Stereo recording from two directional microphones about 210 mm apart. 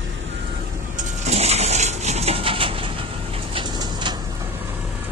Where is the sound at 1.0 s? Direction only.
30° right (ahead or behind).